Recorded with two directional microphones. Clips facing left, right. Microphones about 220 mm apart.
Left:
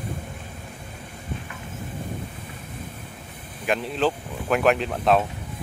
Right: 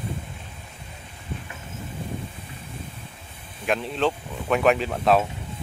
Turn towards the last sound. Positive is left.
turn(degrees=0)  # may be behind; listen again after turning